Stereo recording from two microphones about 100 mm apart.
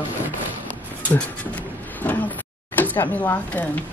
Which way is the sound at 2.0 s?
15° left (ahead or behind).